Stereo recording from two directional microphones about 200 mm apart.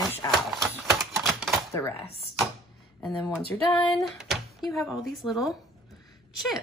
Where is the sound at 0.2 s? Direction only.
20° left (ahead or behind).